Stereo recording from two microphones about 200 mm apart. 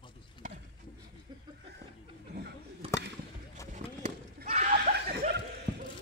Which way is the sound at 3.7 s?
40° right (ahead or behind).